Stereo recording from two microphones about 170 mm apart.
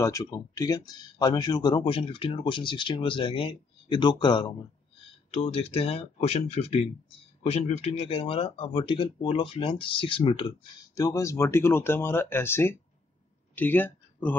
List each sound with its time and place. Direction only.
0.0 s speech: 20° left (ahead or behind)
5.3 s speech: 35° left (ahead or behind)
11.0 s speech: 20° left (ahead or behind)